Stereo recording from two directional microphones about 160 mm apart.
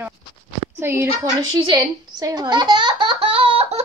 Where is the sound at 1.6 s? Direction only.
25° right (ahead or behind).